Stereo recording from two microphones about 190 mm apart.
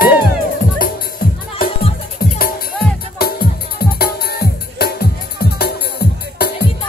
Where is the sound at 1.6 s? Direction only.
50° left (ahead or behind).